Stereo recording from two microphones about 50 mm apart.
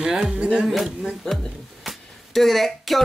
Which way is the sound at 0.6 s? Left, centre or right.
Centre.